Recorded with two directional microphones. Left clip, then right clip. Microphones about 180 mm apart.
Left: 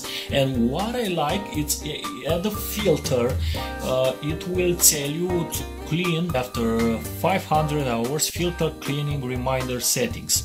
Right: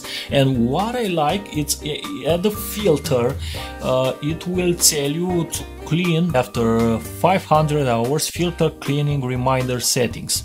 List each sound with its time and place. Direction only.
0.3 s speech: 45° right (ahead or behind)